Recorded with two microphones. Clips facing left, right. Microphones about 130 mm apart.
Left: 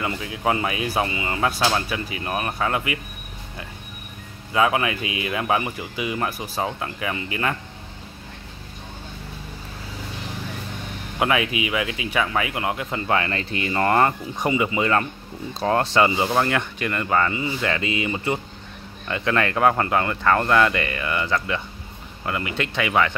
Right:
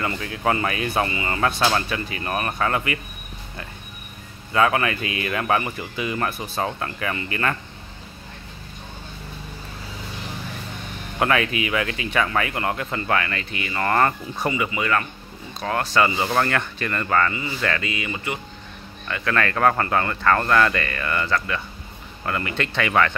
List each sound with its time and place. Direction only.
0.0 s speech: 10° left (ahead or behind)
4.5 s speech: 10° left (ahead or behind)
11.1 s speech: 10° left (ahead or behind)
13.2 s speech: 30° left (ahead or behind); by 23.1 s 10° left (ahead or behind)